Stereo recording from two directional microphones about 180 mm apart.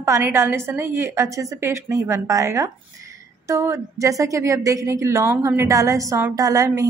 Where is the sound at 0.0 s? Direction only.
15° right (ahead or behind).